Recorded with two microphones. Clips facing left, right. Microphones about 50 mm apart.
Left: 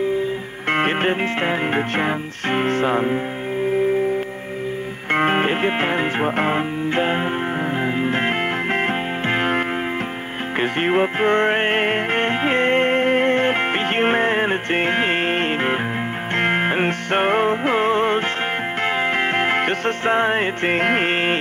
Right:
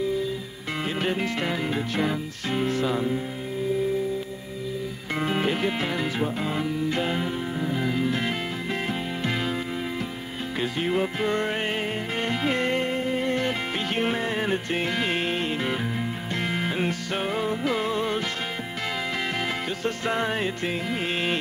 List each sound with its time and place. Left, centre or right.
0.7 s music: left
1.2 s music: left
5.1 s music: left
10.6 s music: left
20.1 s music: left
20.7 s music: left